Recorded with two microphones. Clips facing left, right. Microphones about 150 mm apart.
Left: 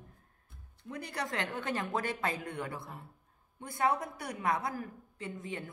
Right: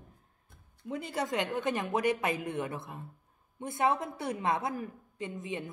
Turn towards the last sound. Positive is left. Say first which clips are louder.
# right 3 dB
turn(degrees=-20)  # may be behind; listen again after turning